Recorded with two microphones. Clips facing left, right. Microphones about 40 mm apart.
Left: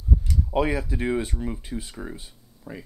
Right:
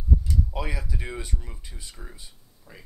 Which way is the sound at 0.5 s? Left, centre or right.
Left.